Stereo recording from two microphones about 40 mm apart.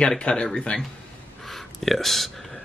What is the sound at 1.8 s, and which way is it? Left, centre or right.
Speech, centre.